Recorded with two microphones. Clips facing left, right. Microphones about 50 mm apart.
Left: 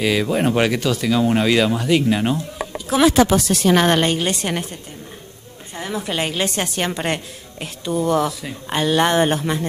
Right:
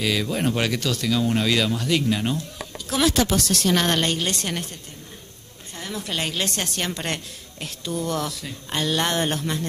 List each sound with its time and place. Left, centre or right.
0.0 s speech: centre
5.8 s speech: centre